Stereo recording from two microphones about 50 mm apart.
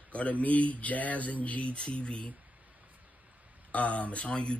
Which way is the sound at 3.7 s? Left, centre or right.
Left.